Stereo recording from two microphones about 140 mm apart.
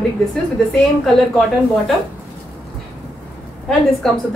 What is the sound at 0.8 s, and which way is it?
A woman's voice, centre (ahead or behind).